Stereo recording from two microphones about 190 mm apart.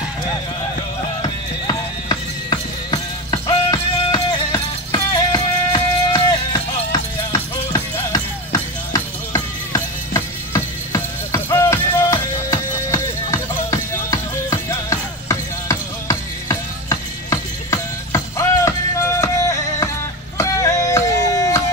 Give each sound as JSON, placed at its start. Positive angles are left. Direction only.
{"t": 1.2, "sound": "music", "side_deg": 20}